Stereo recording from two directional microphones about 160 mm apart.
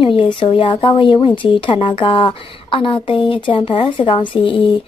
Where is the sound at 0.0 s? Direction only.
30° left (ahead or behind).